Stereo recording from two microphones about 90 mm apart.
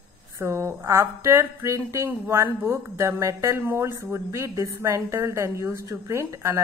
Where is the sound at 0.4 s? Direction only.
30° right (ahead or behind).